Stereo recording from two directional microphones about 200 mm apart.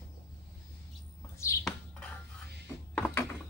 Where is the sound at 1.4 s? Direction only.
15° left (ahead or behind).